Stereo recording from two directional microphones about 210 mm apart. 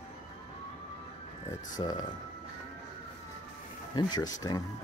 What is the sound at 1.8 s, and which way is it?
Speech, 20° left (ahead or behind).